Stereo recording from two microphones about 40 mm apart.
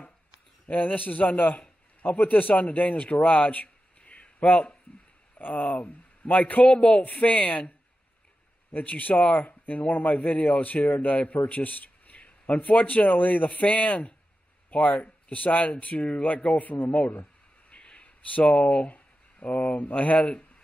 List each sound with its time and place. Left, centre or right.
0.7 s a man's voice: left
5.4 s speech: left
7.0 s speech: left
8.7 s speech: left
17.1 s a sound: left
17.7 s a sound: left
18.5 s speech: left